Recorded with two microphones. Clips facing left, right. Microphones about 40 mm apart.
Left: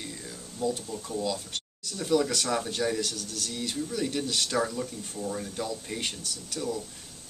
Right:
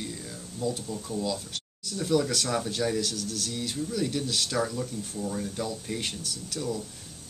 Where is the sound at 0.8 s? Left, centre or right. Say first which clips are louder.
Right 1 dB; centre.